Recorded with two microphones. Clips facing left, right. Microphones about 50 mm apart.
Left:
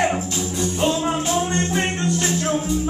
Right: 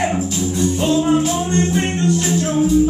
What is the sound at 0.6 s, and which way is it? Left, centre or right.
Music, centre.